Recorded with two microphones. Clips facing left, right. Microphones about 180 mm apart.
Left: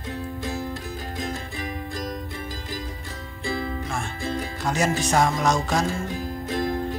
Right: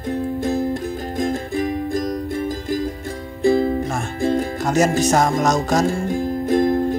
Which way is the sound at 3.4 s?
45° right (ahead or behind).